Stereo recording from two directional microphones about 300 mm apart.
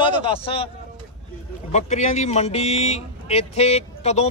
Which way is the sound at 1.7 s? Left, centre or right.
Left.